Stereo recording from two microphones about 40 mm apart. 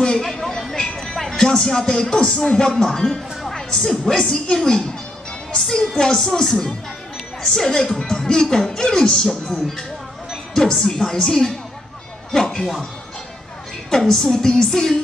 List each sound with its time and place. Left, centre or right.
0.0 s a sound: centre
0.9 s music: centre
1.4 s a woman's voice: centre
10.5 s speech: centre
13.8 s speech: centre